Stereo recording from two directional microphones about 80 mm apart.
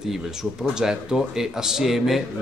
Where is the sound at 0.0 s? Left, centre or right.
Centre.